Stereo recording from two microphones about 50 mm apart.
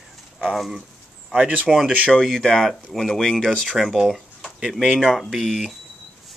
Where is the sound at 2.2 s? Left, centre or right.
Centre.